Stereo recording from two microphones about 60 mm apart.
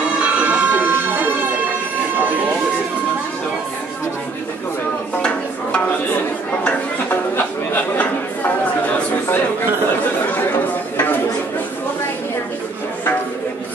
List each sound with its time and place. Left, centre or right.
0.2 s music: right
6.6 s chatter: left